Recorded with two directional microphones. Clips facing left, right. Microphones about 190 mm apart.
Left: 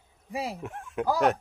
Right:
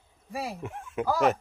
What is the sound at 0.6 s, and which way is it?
Speech, centre (ahead or behind).